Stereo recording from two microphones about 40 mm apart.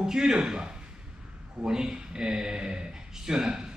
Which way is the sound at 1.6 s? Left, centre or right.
Right.